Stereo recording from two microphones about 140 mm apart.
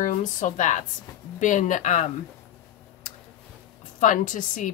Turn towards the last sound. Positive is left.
turn(degrees=70)  # may be behind; listen again after turning